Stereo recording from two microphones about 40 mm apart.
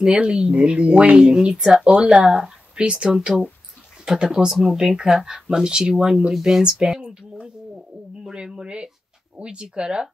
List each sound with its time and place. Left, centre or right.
0.0 s speech: right
4.5 s speech: centre
6.3 s speech: centre
6.6 s speech: right
7.7 s bird: right
8.6 s speech: right